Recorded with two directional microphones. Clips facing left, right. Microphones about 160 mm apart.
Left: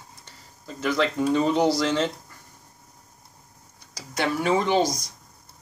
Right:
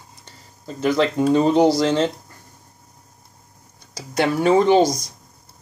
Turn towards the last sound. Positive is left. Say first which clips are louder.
# right 7 dB
turn(degrees=-40)  # may be behind; listen again after turning